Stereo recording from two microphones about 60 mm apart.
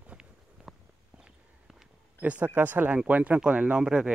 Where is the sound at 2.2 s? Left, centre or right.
Right.